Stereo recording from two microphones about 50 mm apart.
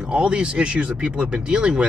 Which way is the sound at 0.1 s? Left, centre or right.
Right.